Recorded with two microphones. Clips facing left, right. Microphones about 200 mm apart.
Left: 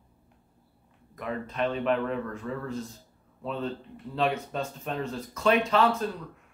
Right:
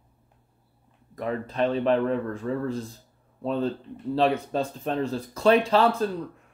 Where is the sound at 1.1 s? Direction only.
35° right (ahead or behind).